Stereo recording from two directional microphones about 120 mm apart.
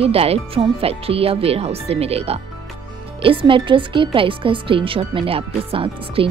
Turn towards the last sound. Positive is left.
turn(degrees=-50)  # may be behind; listen again after turning